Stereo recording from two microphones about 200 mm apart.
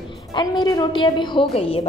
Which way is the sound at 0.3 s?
20° left (ahead or behind).